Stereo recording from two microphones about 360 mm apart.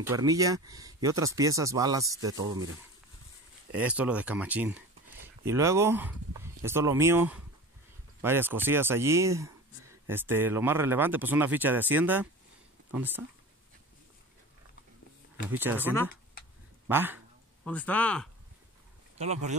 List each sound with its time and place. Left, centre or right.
0.0 s speech: centre
3.7 s speech: centre
15.5 s speech: centre
19.1 s speech: centre